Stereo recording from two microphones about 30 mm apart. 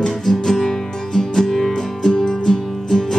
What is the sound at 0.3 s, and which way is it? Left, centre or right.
Music, centre.